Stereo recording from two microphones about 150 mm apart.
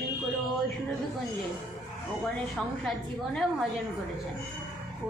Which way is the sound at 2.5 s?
Centre (ahead or behind).